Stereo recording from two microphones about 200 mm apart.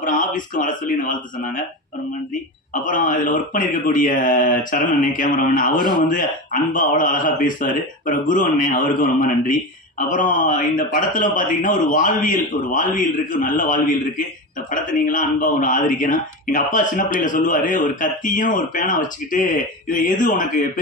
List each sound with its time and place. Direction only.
0.0 s a man's voice: 40° left (ahead or behind)
2.8 s speech: 40° left (ahead or behind)